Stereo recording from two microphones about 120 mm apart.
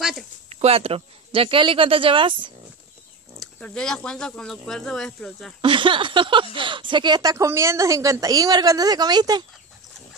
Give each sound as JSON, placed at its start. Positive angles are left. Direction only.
{"t": 0.5, "sound": "speech", "side_deg": -60}
{"t": 3.3, "sound": "speech", "side_deg": 10}
{"t": 5.6, "sound": "speech", "side_deg": -45}